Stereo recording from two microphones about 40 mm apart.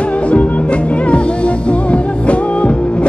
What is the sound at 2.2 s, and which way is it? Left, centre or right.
Music, left.